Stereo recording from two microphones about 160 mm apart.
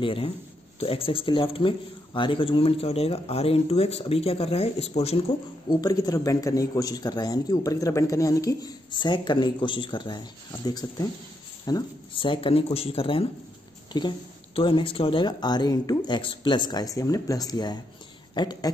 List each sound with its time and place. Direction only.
0.0 s speech: 35° left (ahead or behind)
5.7 s speech: 25° left (ahead or behind)